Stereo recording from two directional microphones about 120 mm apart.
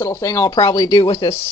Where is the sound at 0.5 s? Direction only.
35° left (ahead or behind).